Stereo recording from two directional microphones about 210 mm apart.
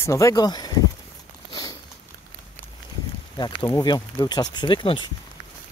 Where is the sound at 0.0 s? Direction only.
15° left (ahead or behind).